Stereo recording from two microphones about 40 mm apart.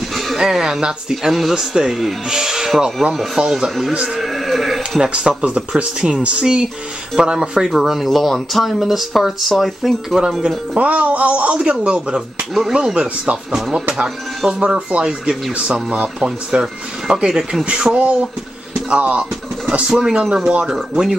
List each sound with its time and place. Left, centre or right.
0.3 s speech: centre
3.2 s speech: centre
4.2 s sheep: centre
5.0 s speech: centre
5.4 s speech: right
7.6 s speech: centre
8.1 s speech: centre
10.7 s speech: right; by 13.8 s centre
14.6 s speech: right
17.9 s speech: right
19.9 s speech: centre